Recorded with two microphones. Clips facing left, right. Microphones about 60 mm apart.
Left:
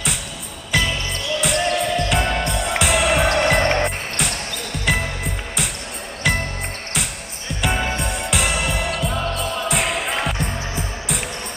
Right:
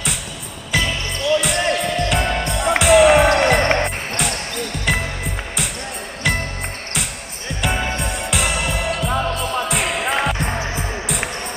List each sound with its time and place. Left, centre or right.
0.7 s music: centre
7.6 s music: centre